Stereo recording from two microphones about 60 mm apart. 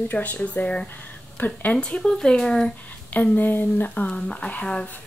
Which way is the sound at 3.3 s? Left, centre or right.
Left.